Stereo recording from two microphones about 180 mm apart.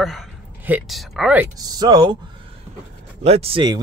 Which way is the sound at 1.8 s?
25° right (ahead or behind).